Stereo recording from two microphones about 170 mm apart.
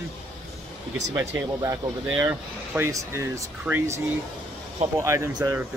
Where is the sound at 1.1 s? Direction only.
15° right (ahead or behind).